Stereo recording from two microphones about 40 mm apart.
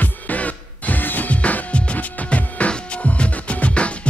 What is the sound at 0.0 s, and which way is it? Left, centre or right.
Music, left.